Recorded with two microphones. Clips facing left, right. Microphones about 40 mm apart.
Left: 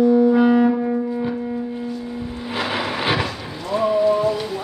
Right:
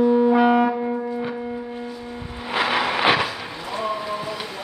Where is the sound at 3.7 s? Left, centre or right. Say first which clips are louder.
Left 9 dB; centre.